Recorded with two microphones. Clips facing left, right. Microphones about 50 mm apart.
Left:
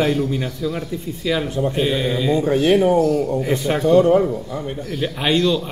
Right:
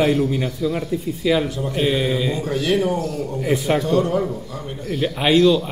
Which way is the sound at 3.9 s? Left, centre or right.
Left.